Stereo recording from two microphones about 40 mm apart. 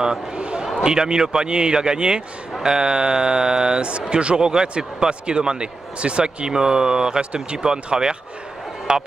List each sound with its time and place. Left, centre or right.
0.0 s speech: right